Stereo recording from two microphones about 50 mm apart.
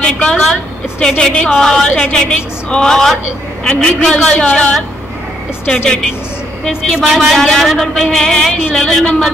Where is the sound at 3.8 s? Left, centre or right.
Left.